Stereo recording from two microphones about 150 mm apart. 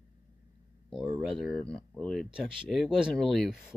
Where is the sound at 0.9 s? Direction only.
Centre (ahead or behind).